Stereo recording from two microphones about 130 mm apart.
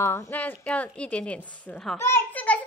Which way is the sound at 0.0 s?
20° left (ahead or behind).